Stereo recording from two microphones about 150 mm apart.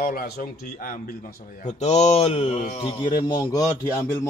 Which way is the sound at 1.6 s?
50° left (ahead or behind).